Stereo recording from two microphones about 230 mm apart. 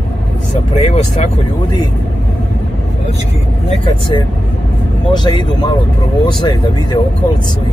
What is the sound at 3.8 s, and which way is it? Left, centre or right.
Speech, left.